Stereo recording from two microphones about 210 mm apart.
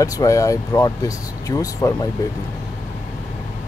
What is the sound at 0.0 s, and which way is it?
Speech, 15° left (ahead or behind).